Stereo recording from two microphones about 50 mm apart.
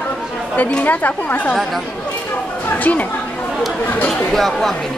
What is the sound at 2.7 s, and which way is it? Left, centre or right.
Speech, left.